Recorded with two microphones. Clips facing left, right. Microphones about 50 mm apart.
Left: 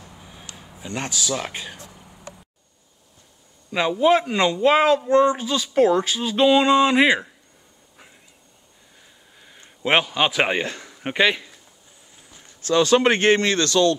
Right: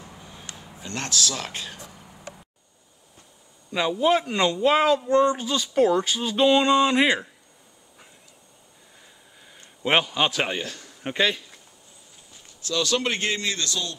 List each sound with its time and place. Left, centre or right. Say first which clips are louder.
0.2 s a sound: even; centre
0.7 s speech: even; centre
4.0 s speech: left 4 dB; centre
5.4 s speech: left 3 dB; centre
9.0 s a sound: left 2 dB; centre
9.8 s speech: left 2 dB; centre
10.2 s speech: left 4 dB; centre
10.5 s a man's voice: left 6 dB; left
12.6 s speech: left 8 dB; left